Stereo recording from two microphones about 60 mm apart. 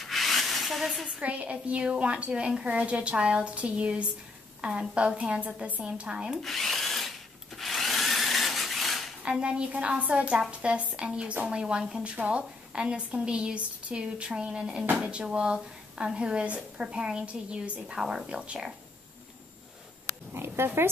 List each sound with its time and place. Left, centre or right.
0.0 s rub: centre
1.0 s a woman's voice: right
6.4 s rub: centre
7.5 s wood: centre
9.2 s a woman's voice: centre
20.3 s speech: right